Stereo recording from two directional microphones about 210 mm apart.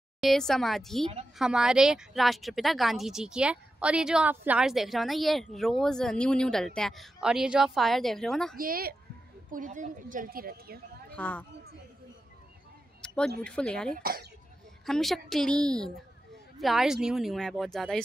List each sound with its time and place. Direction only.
0.2 s speech: centre (ahead or behind)
8.5 s a woman's voice: 45° right (ahead or behind)
11.1 s speech: 5° left (ahead or behind)
13.0 s a sound: 5° left (ahead or behind)
13.4 s speech: 5° left (ahead or behind)